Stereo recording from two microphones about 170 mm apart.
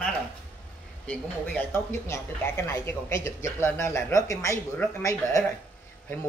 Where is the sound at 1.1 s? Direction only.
10° left (ahead or behind).